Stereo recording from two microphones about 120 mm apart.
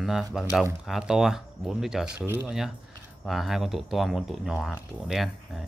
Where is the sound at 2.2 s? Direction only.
15° right (ahead or behind).